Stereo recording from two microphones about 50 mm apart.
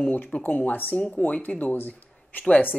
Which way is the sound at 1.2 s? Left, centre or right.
Left.